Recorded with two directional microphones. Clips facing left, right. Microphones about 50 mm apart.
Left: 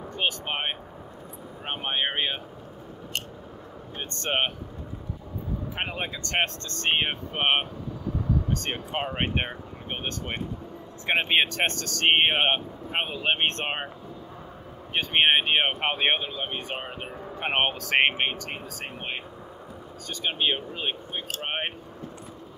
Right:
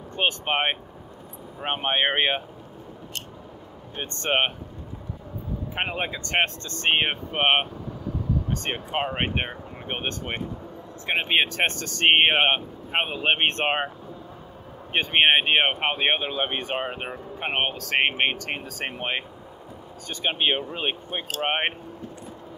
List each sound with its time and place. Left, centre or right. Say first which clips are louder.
0.1 s speech: right 5 dB; right
3.9 s speech: right 3 dB; right
5.8 s speech: right 5 dB; centre
9.8 s speech: right 3 dB; right
11.1 s speech: even; centre; by 13.8 s right
14.9 s speech: right 2 dB; right
15.8 s speech: right 1 dB; centre
16.3 s speech: right 5 dB; right
17.5 s speech: left 1 dB; centre
18.3 s speech: right 4 dB; right
20.1 s speech: right 2 dB; right